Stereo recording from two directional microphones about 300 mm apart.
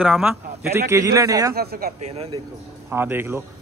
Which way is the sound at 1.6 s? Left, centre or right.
Right.